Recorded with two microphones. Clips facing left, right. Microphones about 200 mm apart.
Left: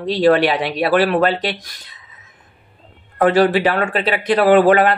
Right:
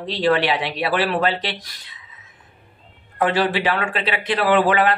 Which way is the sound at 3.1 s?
45° left (ahead or behind).